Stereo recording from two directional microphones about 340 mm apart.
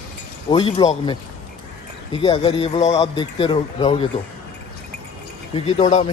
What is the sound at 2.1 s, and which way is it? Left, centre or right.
A man's voice, centre.